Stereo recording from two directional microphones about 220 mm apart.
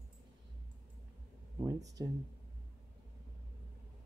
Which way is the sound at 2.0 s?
15° right (ahead or behind).